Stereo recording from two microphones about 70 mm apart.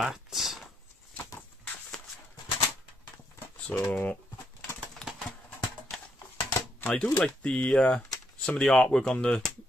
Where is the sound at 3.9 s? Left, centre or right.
Centre.